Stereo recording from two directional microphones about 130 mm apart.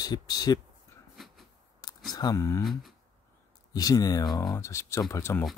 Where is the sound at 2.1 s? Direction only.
30° left (ahead or behind).